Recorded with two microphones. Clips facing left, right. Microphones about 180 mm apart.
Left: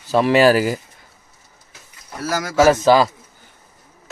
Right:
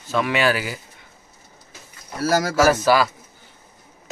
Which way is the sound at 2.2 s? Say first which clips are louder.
Right 4 dB; 30° right (ahead or behind).